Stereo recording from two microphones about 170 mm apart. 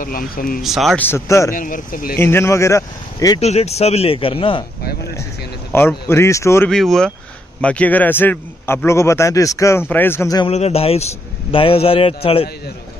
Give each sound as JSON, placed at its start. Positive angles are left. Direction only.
{"t": 0.0, "sound": "speech", "side_deg": 55}
{"t": 0.6, "sound": "speech", "side_deg": 0}
{"t": 1.0, "sound": "a man's voice", "side_deg": 15}
{"t": 1.5, "sound": "speech", "side_deg": 55}
{"t": 2.1, "sound": "a man's voice", "side_deg": 15}
{"t": 3.3, "sound": "speech", "side_deg": 40}
{"t": 5.7, "sound": "a man's voice", "side_deg": 15}
{"t": 6.7, "sound": "a man's voice", "side_deg": 0}
{"t": 10.5, "sound": "speech", "side_deg": 35}